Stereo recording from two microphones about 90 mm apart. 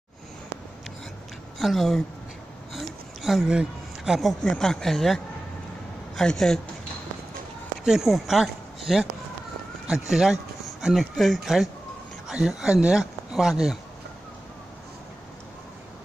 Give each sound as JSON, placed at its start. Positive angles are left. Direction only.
{"t": 1.6, "sound": "speech", "side_deg": 0}
{"t": 2.7, "sound": "a sound", "side_deg": 0}
{"t": 4.5, "sound": "speech", "side_deg": 5}
{"t": 7.8, "sound": "speech", "side_deg": -5}
{"t": 10.0, "sound": "speech", "side_deg": -5}